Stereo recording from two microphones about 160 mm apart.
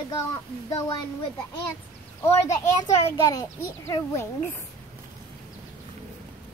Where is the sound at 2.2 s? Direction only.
15° left (ahead or behind).